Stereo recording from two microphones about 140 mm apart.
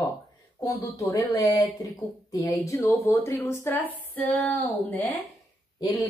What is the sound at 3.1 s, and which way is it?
Speech, 20° left (ahead or behind).